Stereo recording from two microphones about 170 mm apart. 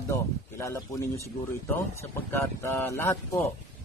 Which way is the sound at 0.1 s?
15° left (ahead or behind).